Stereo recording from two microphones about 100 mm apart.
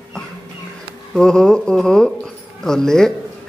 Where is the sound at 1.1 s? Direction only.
5° left (ahead or behind).